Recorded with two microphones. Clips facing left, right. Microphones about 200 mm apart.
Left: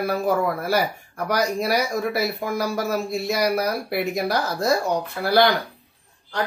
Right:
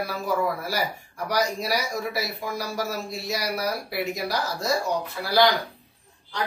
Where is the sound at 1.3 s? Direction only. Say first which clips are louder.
Left 4 dB; 55° left (ahead or behind).